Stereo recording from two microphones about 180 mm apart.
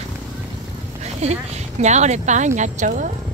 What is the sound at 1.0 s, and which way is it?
Speech, 35° right (ahead or behind).